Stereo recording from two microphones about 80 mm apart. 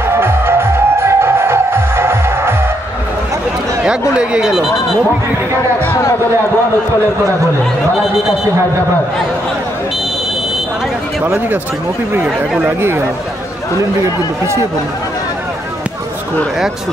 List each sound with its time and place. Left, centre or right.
0.0 s music: right
4.1 s speech: centre
12.6 s speech: right